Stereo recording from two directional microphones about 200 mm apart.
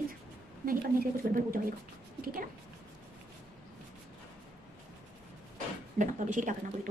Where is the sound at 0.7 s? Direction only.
45° right (ahead or behind).